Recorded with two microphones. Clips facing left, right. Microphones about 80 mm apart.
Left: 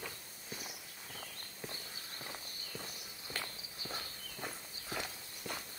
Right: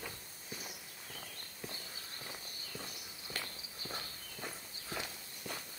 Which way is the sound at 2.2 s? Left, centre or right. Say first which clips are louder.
Left 1 dB; centre.